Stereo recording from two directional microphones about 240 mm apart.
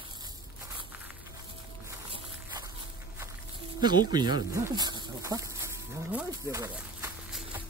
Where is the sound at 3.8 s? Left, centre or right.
Centre.